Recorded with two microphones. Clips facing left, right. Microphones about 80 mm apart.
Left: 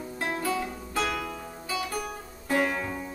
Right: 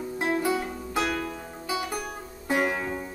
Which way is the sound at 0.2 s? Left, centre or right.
Centre.